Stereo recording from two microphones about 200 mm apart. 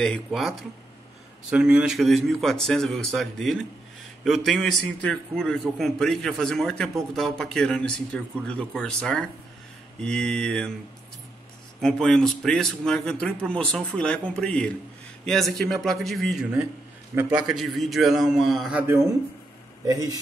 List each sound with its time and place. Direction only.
0.0 s a man's voice: centre (ahead or behind)
11.8 s a man's voice: centre (ahead or behind); by 20.2 s 15° right (ahead or behind)